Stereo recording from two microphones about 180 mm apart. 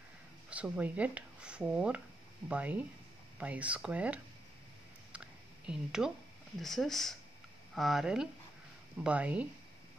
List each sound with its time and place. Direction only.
0.5 s speech: 10° right (ahead or behind)
5.1 s a sound: 5° right (ahead or behind)
6.6 s speech: centre (ahead or behind)